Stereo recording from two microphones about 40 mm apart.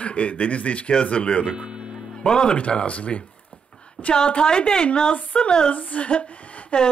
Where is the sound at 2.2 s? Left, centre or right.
Left.